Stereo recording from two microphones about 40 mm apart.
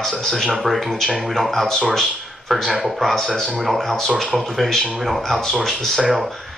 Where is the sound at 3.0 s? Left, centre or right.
Centre.